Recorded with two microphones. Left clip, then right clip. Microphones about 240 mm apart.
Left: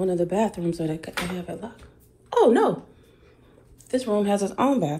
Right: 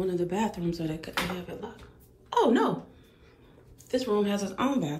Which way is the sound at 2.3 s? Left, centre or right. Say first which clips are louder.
Left 6 dB; centre.